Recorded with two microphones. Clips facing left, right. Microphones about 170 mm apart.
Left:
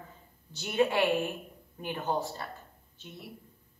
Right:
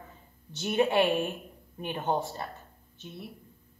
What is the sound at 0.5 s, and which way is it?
A woman's voice, 25° right (ahead or behind).